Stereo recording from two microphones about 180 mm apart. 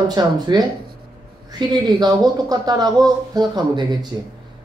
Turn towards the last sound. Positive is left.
turn(degrees=-25)  # may be behind; listen again after turning